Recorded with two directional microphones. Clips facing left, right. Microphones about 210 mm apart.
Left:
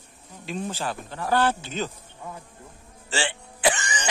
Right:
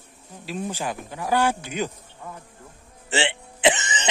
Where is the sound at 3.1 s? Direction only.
20° right (ahead or behind).